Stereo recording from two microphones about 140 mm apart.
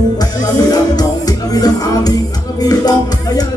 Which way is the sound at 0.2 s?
25° left (ahead or behind).